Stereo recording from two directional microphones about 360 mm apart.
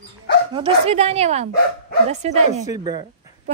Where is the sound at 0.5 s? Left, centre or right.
Centre.